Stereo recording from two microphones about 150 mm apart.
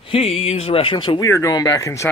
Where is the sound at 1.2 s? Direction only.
20° left (ahead or behind).